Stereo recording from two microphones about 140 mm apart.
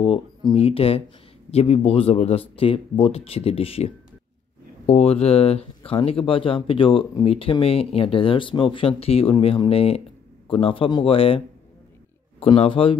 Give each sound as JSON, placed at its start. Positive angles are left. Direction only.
{"t": 0.0, "sound": "speech", "side_deg": 40}
{"t": 12.5, "sound": "speech", "side_deg": 40}